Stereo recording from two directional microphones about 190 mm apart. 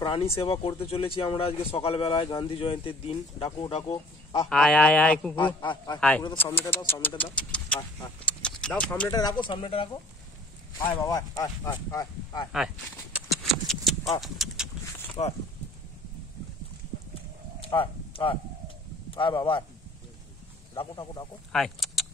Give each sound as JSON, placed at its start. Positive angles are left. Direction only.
{"t": 0.0, "sound": "speech", "side_deg": 25}
{"t": 4.5, "sound": "speech", "side_deg": 5}
{"t": 5.3, "sound": "speech", "side_deg": 25}
{"t": 5.9, "sound": "speech", "side_deg": 5}
{"t": 8.3, "sound": "clip-clop", "side_deg": 5}
{"t": 9.4, "sound": "speech", "side_deg": 25}
{"t": 10.8, "sound": "speech", "side_deg": 20}
{"t": 12.5, "sound": "a sound", "side_deg": -5}
{"t": 14.2, "sound": "speech", "side_deg": 0}
{"t": 15.2, "sound": "speech", "side_deg": 25}
{"t": 17.6, "sound": "speech", "side_deg": 25}
{"t": 20.7, "sound": "speech", "side_deg": 25}
{"t": 21.5, "sound": "speech", "side_deg": 0}